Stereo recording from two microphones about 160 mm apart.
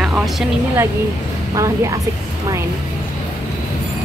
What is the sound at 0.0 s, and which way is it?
Speech, 5° right (ahead or behind).